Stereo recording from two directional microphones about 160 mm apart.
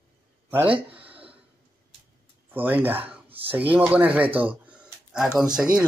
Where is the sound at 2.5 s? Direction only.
10° right (ahead or behind).